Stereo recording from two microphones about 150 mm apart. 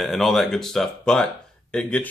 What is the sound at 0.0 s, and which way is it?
Speech, centre (ahead or behind).